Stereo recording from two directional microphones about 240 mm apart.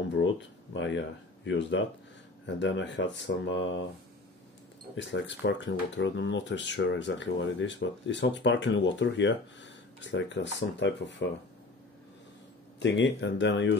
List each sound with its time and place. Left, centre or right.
0.7 s speech: left
4.9 s speech: left
12.7 s speech: left